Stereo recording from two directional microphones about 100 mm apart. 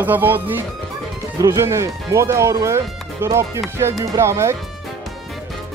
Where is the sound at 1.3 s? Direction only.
35° right (ahead or behind).